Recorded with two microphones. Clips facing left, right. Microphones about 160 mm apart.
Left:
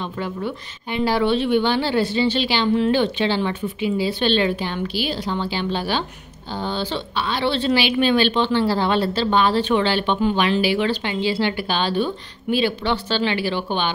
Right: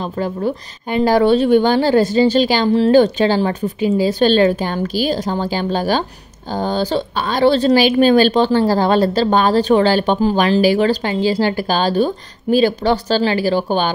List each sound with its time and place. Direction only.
0.0 s a woman's voice: 40° right (ahead or behind)